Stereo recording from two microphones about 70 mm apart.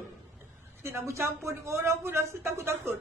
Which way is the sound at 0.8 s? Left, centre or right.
Right.